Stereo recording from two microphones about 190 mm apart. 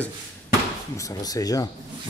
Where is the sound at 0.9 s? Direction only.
20° left (ahead or behind).